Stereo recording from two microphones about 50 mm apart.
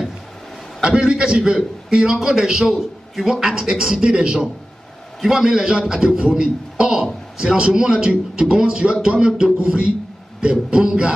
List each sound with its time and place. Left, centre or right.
0.8 s a man's voice: centre